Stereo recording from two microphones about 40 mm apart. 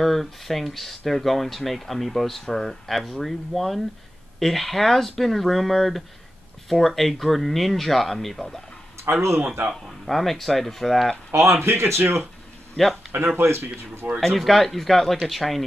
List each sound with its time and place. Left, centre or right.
0.0 s speech: centre
9.1 s speech: right
10.0 s speech: centre
11.3 s speech: right
12.8 s a man's voice: centre
13.4 s speech: right
14.2 s speech: centre